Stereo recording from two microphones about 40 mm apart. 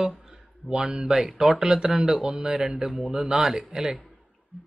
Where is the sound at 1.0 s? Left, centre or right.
Centre.